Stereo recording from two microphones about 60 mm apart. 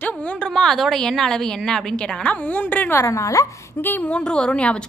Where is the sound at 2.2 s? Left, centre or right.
Left.